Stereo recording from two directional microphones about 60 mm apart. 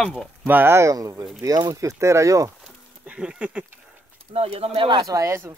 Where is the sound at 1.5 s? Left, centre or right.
Right.